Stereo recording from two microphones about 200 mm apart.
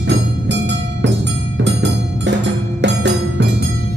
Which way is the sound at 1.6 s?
60° right (ahead or behind).